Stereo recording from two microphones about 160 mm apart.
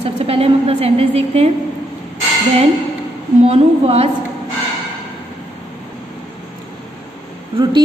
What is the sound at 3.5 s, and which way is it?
Speech, 40° right (ahead or behind).